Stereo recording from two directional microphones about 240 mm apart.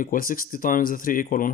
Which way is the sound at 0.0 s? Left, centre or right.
Left.